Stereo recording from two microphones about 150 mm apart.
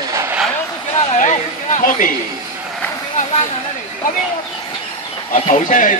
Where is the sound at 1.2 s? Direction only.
55° left (ahead or behind).